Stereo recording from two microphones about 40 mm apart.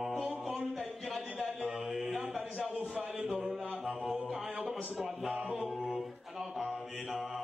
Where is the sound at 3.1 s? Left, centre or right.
Centre.